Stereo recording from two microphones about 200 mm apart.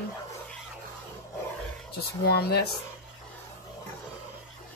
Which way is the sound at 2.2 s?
55° left (ahead or behind).